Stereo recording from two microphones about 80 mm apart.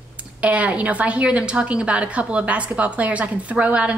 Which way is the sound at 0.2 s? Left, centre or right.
Centre.